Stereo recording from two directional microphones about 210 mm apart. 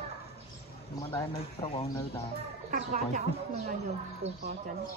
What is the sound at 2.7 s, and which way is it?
Speech, 35° right (ahead or behind).